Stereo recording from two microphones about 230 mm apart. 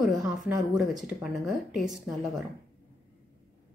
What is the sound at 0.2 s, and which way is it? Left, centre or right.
A woman's voice, centre.